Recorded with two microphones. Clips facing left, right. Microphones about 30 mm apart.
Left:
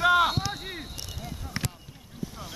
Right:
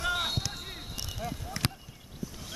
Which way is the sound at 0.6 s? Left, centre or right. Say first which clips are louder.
Left 4 dB; left.